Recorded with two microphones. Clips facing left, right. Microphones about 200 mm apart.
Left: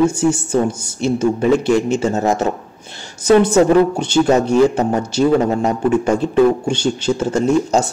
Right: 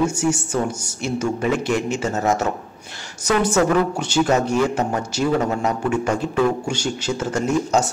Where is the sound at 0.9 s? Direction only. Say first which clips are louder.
Left 7 dB; 30° left (ahead or behind).